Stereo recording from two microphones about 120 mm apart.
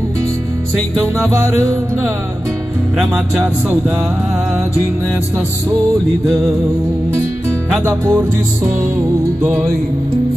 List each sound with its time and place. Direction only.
3.0 s music: centre (ahead or behind)
7.8 s music: 20° right (ahead or behind)